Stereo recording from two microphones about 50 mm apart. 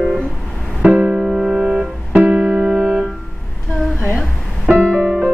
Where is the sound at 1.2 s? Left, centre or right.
Centre.